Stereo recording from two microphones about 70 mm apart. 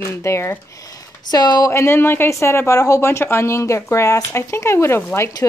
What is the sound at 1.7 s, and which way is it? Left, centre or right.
Speech, left.